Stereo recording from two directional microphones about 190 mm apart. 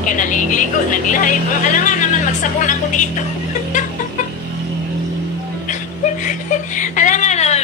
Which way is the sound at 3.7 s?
40° left (ahead or behind).